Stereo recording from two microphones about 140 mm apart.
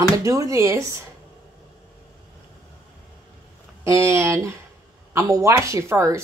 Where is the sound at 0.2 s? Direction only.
20° right (ahead or behind).